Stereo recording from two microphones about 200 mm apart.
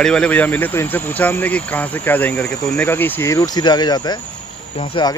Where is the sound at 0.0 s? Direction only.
5° left (ahead or behind).